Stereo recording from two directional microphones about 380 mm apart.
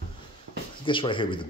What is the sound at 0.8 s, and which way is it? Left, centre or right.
Speech, centre.